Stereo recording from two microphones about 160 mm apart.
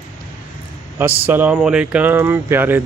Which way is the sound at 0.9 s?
10° right (ahead or behind).